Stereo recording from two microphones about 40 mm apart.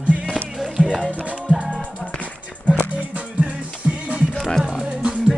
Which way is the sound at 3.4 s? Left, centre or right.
Right.